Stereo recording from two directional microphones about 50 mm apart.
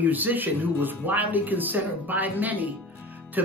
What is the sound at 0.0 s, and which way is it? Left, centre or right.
Speech, right.